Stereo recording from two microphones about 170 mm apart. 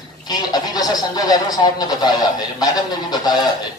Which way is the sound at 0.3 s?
25° left (ahead or behind).